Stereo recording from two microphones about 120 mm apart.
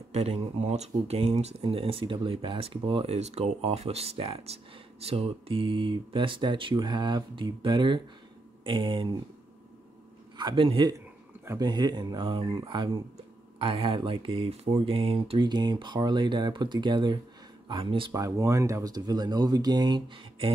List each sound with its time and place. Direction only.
0.1 s speech: 65° right (ahead or behind); by 3.2 s 45° right (ahead or behind)
3.2 s speech: 65° right (ahead or behind); by 9.1 s 45° right (ahead or behind)
10.3 s speech: 40° right (ahead or behind)
18.1 s speech: 25° right (ahead or behind); by 20.5 s 40° right (ahead or behind)